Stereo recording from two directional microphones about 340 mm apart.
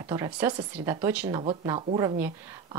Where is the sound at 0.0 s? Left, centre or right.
Centre.